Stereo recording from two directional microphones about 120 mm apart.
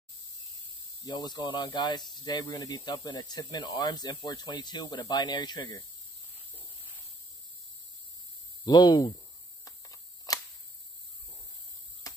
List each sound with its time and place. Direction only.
1.0 s speech: 35° left (ahead or behind)
8.6 s speech: 35° left (ahead or behind)
9.7 s a sound: 30° left (ahead or behind)